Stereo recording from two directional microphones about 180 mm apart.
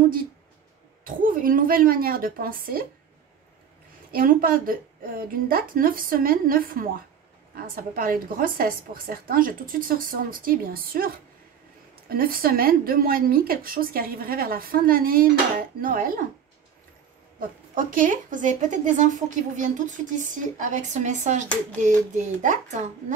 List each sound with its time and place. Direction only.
1.0 s speech: 50° right (ahead or behind)
4.1 s speech: 50° right (ahead or behind)
17.4 s speech: 50° right (ahead or behind)